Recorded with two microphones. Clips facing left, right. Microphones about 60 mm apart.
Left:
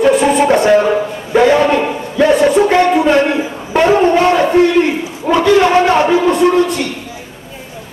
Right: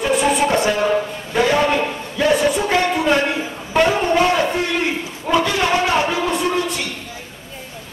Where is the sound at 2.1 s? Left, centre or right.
Left.